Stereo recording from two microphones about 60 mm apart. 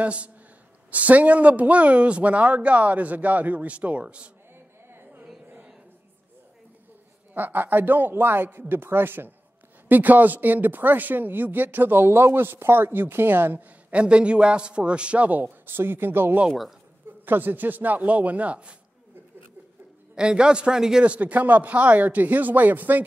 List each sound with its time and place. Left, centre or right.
0.0 s a man's voice: right
4.8 s a sound: right
7.3 s a woman's voice: right
20.2 s a man's voice: centre
21.0 s a man's voice: right